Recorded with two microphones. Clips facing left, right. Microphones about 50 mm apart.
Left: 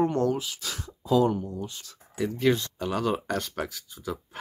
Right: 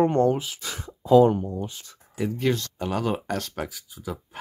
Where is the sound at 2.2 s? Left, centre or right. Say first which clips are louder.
Left 1 dB; centre.